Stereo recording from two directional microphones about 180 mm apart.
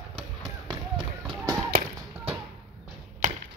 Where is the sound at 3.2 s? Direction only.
50° right (ahead or behind).